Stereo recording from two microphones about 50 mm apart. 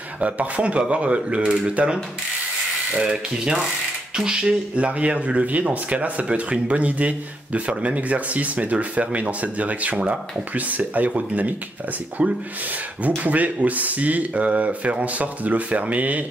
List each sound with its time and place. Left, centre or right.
0.2 s speech: right
3.0 s ratchet: centre
4.2 s speech: centre; by 16.3 s right